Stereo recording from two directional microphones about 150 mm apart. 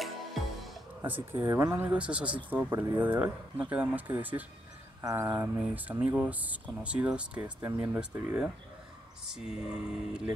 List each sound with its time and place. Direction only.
0.0 s music: centre (ahead or behind)
1.0 s speech: 15° right (ahead or behind)
1.9 s speech: 5° right (ahead or behind)
5.0 s speech: 20° right (ahead or behind)
9.2 s a sound: 5° right (ahead or behind)